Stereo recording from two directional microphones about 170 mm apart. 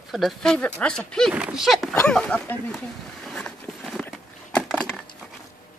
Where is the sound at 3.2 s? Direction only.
Centre (ahead or behind).